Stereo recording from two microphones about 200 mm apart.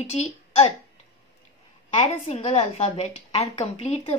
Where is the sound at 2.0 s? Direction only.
35° left (ahead or behind).